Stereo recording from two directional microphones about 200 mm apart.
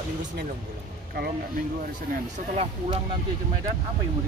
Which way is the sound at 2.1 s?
40° right (ahead or behind).